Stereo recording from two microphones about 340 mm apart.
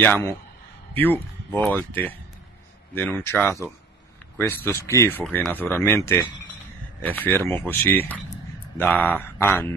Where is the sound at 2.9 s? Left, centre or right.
Centre.